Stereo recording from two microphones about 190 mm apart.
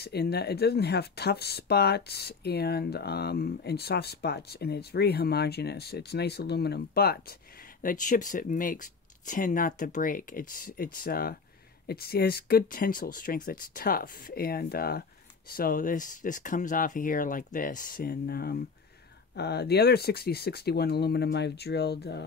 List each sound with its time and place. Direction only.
0.0 s speech: 55° left (ahead or behind)
7.8 s speech: 45° left (ahead or behind); by 22.2 s 60° left (ahead or behind)